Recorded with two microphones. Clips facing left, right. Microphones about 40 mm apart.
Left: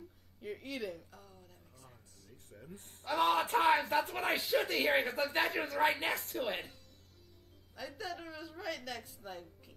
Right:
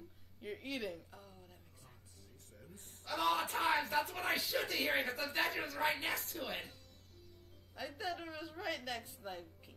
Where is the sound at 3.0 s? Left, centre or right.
Left.